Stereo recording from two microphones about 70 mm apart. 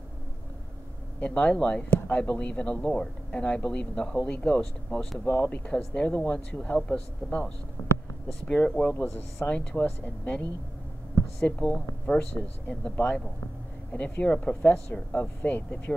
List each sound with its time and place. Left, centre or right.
1.2 s a man's voice: centre
8.9 s speech: left
9.5 s a man's voice: centre
11.4 s a man's voice: left